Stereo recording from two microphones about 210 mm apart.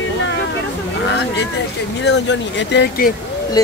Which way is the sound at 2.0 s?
55° left (ahead or behind).